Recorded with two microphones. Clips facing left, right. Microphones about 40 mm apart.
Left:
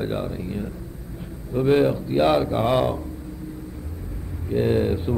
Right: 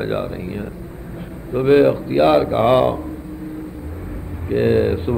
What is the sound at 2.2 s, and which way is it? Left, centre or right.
Speech, centre.